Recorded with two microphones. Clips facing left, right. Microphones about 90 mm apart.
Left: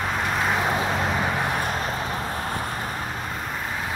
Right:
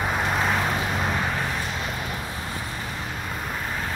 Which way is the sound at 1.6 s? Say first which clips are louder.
Left 4 dB; 45° left (ahead or behind).